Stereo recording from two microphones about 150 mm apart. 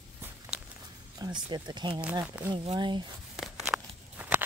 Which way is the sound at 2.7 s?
30° right (ahead or behind).